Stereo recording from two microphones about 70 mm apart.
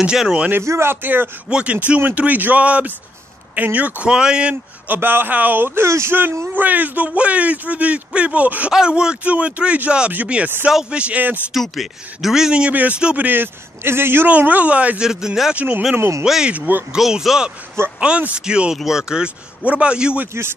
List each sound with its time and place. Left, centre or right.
0.0 s speech: centre
0.5 s speech: right
1.5 s a man's voice: centre
4.8 s a man's voice: right
5.9 s speech: right
6.4 s a man's voice: right
11.5 s a man's voice: centre; by 14.3 s right
14.3 s a man's voice: right
15.0 s speech: centre
15.5 s a man's voice: right
16.0 s speech: right
16.3 s speech: centre
16.5 s a man's voice: right
16.9 s speech: centre